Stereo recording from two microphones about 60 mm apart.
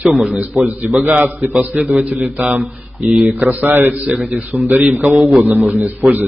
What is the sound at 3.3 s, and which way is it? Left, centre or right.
A man's voice, right.